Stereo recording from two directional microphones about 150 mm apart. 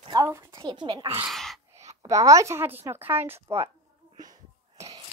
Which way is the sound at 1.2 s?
Centre (ahead or behind).